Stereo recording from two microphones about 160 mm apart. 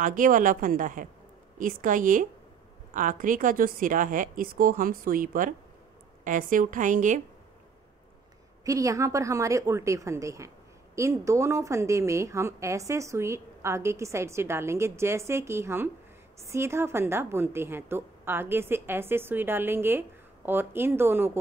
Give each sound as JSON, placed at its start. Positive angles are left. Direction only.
{"t": 0.0, "sound": "a woman's voice", "side_deg": -55}
{"t": 8.6, "sound": "a woman's voice", "side_deg": -20}